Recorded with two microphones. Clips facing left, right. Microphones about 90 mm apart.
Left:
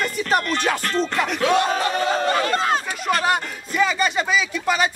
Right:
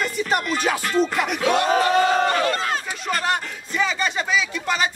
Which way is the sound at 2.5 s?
30° left (ahead or behind).